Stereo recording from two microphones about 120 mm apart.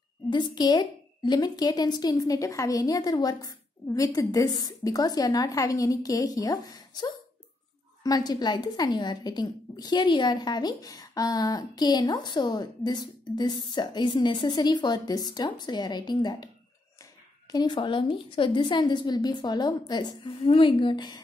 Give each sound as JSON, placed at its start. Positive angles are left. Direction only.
{"t": 0.3, "sound": "a woman's voice", "side_deg": 40}